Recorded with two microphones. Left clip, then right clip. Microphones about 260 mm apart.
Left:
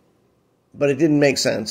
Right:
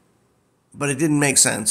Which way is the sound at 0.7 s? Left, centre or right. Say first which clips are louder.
Left 4 dB; centre.